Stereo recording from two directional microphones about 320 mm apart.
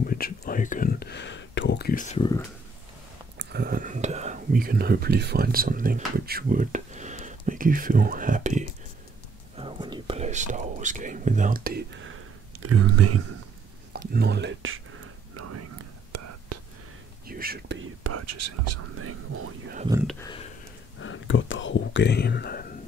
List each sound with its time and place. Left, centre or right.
0.0 s speech: left
3.3 s speech: right
9.6 s whispering: centre; by 13.2 s right
13.9 s speech: right
15.3 s whispering: right
17.3 s speech: right
18.0 s speech: right
19.9 s speech: centre
20.2 s a sound: centre
21.0 s speech: left